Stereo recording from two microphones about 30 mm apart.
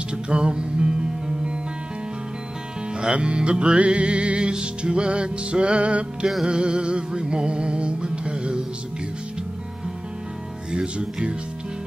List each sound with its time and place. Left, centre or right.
0.3 s music: right
2.9 s music: right
6.4 s music: right
10.7 s music: right